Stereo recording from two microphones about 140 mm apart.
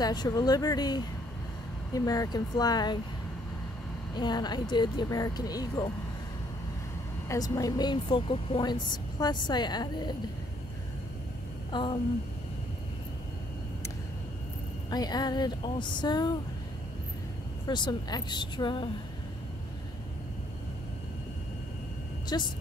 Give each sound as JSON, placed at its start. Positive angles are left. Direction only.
{"t": 0.0, "sound": "speech", "side_deg": 30}
{"t": 4.1, "sound": "speech", "side_deg": 30}
{"t": 7.2, "sound": "speech", "side_deg": 25}
{"t": 11.7, "sound": "speech", "side_deg": 35}
{"t": 14.9, "sound": "speech", "side_deg": 30}
{"t": 17.6, "sound": "speech", "side_deg": 30}
{"t": 22.3, "sound": "speech", "side_deg": 30}